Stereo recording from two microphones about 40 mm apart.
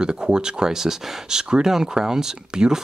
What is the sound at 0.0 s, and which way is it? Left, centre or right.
Speech, right.